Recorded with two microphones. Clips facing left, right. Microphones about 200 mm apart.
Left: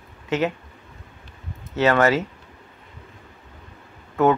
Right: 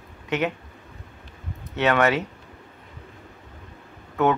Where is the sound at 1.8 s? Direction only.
Centre (ahead or behind).